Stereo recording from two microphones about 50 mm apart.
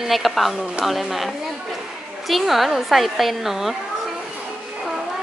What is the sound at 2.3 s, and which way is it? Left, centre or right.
A woman's voice, centre.